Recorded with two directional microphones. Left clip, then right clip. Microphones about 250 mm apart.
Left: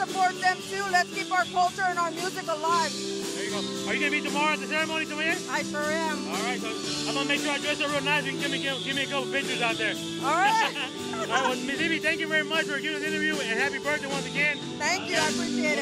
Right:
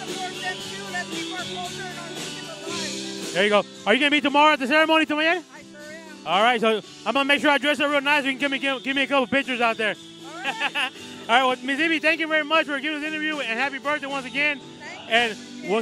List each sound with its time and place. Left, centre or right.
3.3 s speech: right
6.2 s speech: right